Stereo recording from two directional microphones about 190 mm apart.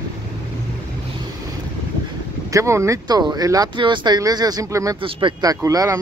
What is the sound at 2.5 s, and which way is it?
Speech, 15° right (ahead or behind).